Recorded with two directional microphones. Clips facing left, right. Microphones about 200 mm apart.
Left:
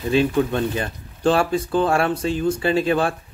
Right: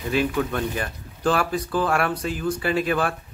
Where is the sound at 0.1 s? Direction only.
25° left (ahead or behind).